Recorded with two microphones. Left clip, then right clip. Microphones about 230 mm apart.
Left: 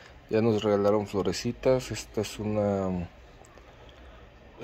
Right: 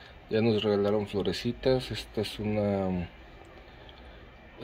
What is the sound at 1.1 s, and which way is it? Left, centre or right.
Speech, centre.